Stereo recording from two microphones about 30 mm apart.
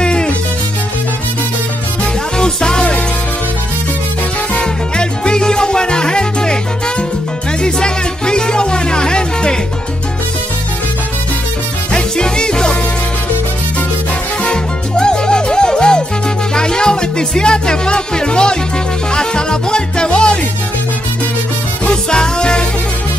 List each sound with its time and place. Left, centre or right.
0.0 s music: left
2.3 s music: left
4.6 s music: left
11.9 s music: left
14.4 s music: left
22.1 s music: left